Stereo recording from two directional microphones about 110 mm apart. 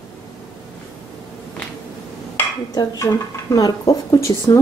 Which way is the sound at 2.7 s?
35° left (ahead or behind).